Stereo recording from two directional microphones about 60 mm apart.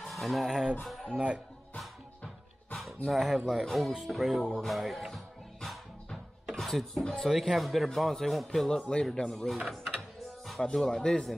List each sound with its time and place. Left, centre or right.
0.0 s speech: centre
1.1 s speech: centre
3.1 s speech: centre
4.5 s music: centre
6.5 s speech: centre
10.6 s speech: centre